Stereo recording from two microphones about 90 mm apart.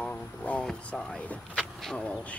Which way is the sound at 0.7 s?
10° left (ahead or behind).